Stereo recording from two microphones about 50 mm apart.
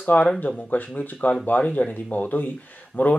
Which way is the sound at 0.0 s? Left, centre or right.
Left.